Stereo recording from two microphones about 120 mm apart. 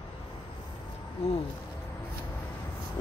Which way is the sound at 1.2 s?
55° left (ahead or behind).